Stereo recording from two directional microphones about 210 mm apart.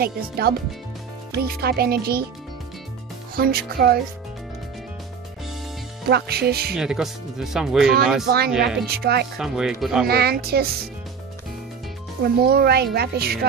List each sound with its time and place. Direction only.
0.0 s speech: 45° right (ahead or behind)
3.3 s speech: 45° right (ahead or behind)
6.0 s speech: 50° right (ahead or behind)
6.7 s speech: 5° right (ahead or behind)
8.8 s speech: 50° right (ahead or behind)
9.4 s speech: centre (ahead or behind)
10.0 s speech: 50° right (ahead or behind)
12.4 s speech: 50° right (ahead or behind)